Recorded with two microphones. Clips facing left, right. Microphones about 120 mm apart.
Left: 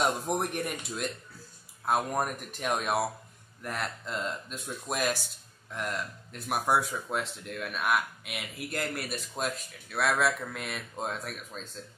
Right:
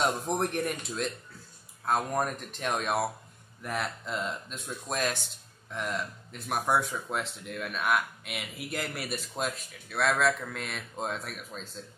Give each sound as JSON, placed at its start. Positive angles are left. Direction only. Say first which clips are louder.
{"t": 0.0, "sound": "speech", "louder": "even", "side_deg": 5}